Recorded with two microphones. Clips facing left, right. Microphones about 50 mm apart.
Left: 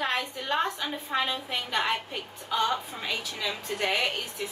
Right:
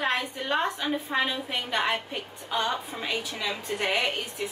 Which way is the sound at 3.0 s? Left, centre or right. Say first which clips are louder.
Right 2 dB; centre.